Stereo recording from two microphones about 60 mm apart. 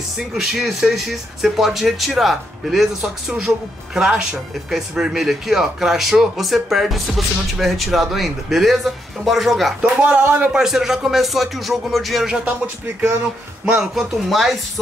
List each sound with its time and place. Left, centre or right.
0.3 s speech: centre
9.8 s speech: right
10.5 s speech: centre
13.7 s speech: centre